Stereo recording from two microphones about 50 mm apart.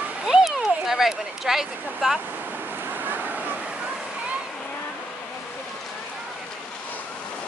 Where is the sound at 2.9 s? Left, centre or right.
Right.